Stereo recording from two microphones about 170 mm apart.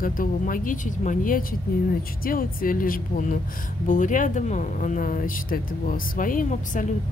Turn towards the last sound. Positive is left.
turn(degrees=55)  # may be behind; listen again after turning